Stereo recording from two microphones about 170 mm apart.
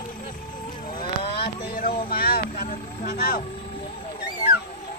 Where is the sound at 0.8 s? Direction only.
30° left (ahead or behind).